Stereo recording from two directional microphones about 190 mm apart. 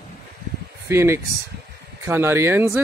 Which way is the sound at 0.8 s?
15° right (ahead or behind).